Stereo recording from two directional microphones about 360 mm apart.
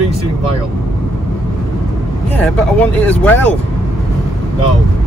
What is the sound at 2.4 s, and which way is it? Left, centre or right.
Speech, centre.